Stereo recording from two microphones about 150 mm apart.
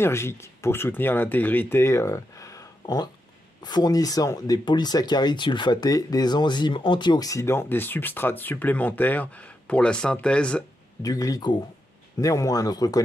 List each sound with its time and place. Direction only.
0.0 s speech: 15° left (ahead or behind)
11.0 s speech: 25° left (ahead or behind)